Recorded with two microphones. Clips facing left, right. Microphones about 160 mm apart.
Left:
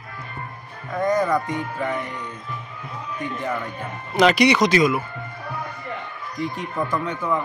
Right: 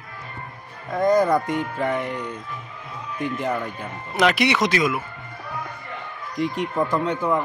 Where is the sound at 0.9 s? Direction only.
35° right (ahead or behind).